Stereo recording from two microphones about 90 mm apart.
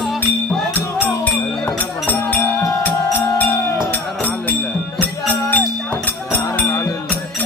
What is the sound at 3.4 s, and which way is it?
Music, 35° left (ahead or behind).